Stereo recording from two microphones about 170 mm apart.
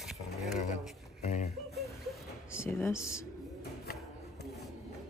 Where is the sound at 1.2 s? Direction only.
45° left (ahead or behind).